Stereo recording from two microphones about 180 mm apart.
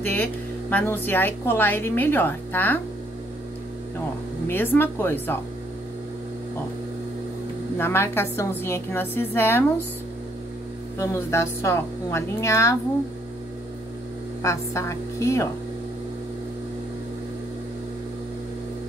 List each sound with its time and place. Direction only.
0.0 s a woman's voice: 10° left (ahead or behind)
4.5 s a woman's voice: 10° left (ahead or behind)
7.7 s a woman's voice: 15° left (ahead or behind)
11.0 s a woman's voice: 15° left (ahead or behind)
14.4 s a woman's voice: 15° left (ahead or behind)